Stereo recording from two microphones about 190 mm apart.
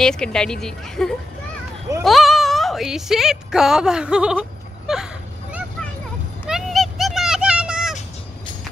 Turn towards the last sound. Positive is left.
turn(degrees=-5)  # may be behind; listen again after turning